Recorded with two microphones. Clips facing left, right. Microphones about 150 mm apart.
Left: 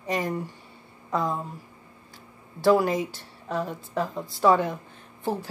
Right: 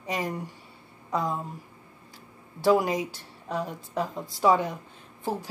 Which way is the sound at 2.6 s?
10° right (ahead or behind).